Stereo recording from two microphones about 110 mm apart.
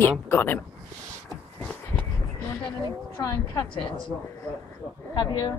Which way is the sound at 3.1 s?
30° left (ahead or behind).